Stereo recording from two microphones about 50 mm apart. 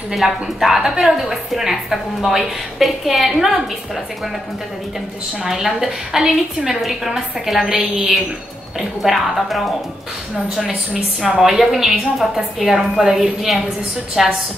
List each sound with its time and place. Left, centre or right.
0.1 s a woman's voice: centre
5.4 s a woman's voice: centre
10.5 s a woman's voice: centre
11.1 s a woman's voice: centre